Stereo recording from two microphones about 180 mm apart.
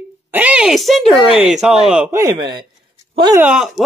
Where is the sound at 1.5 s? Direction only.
Centre (ahead or behind); by 2.6 s 25° right (ahead or behind).